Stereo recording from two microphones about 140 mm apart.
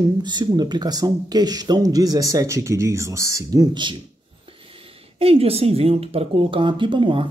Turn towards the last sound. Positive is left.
turn(degrees=-40)  # may be behind; listen again after turning